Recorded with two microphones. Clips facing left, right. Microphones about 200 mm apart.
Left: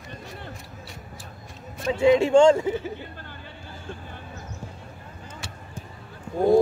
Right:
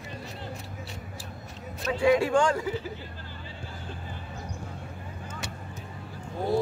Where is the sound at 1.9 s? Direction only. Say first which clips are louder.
Left 5 dB; 25° left (ahead or behind).